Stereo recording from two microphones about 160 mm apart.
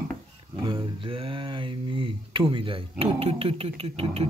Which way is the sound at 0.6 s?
35° right (ahead or behind).